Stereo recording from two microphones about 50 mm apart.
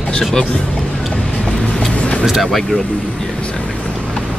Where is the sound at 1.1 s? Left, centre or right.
Centre.